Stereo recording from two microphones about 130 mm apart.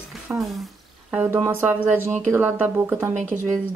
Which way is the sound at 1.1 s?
15° right (ahead or behind).